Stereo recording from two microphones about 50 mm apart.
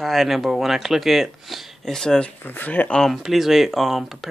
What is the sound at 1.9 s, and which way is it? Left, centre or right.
Speech, centre.